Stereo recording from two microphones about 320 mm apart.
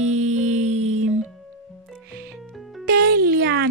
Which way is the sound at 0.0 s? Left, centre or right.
Right.